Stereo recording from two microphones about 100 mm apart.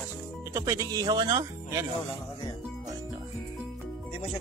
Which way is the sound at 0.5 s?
35° right (ahead or behind).